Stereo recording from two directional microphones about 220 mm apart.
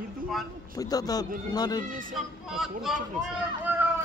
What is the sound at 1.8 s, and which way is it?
Speech, 40° right (ahead or behind).